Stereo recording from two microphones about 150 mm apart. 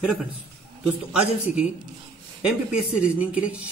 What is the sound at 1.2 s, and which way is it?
Speech, 5° right (ahead or behind).